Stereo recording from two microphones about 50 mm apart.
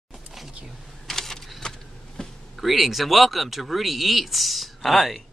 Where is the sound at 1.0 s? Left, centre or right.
Centre.